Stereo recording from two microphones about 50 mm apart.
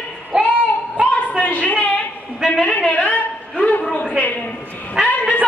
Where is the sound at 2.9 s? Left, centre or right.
Left.